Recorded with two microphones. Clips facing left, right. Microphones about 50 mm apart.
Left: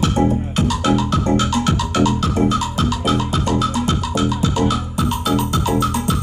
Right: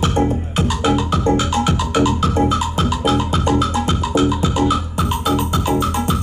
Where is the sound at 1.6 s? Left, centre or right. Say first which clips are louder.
Right 1 dB; centre.